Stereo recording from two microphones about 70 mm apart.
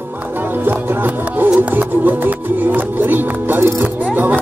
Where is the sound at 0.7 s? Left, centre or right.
Right.